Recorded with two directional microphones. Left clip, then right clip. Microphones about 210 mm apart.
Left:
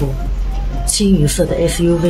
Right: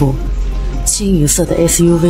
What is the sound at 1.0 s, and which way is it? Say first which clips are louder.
Speech: even; 60° right (ahead or behind).